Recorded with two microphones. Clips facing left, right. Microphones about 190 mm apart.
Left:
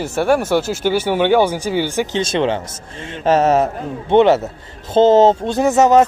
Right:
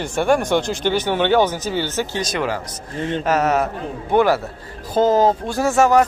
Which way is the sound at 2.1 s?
25° left (ahead or behind).